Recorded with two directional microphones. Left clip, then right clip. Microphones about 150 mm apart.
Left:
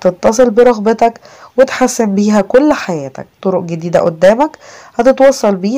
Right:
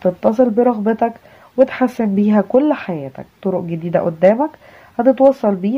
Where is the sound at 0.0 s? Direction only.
35° left (ahead or behind).